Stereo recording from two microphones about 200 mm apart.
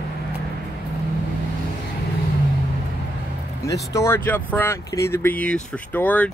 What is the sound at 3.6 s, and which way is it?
Speech, 15° left (ahead or behind).